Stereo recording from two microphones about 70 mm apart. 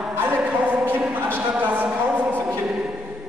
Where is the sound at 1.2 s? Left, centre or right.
Right.